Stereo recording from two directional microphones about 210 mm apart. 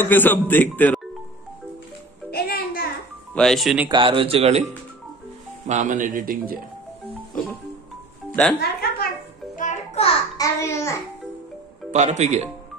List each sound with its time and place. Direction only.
0.0 s speech: 10° left (ahead or behind)
2.3 s a child's voice: 45° left (ahead or behind)
3.3 s speech: centre (ahead or behind)
3.9 s speech: 25° right (ahead or behind)
5.7 s speech: 35° right (ahead or behind)
8.5 s a sound: 50° left (ahead or behind)
9.6 s music: 35° left (ahead or behind)
10.3 s a child's voice: 15° left (ahead or behind)
11.9 s speech: 35° right (ahead or behind)